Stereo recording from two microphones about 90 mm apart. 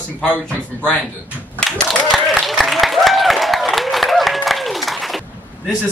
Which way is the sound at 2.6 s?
Centre (ahead or behind).